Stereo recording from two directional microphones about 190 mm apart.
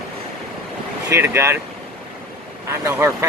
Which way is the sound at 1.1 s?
10° right (ahead or behind).